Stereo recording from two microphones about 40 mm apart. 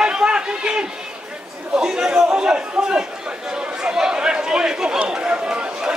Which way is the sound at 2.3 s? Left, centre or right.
Right.